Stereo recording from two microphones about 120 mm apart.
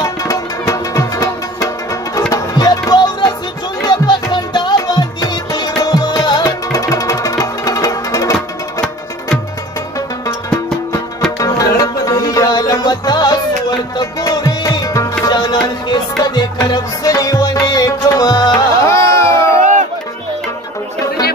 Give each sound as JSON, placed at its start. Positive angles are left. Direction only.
{"t": 0.0, "sound": "music", "side_deg": 25}
{"t": 11.3, "sound": "music", "side_deg": 30}
{"t": 18.9, "sound": "a sound", "side_deg": 25}